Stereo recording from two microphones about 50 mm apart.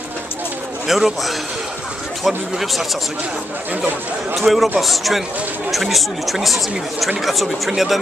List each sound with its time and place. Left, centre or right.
0.8 s speech: centre
4.4 s speech: centre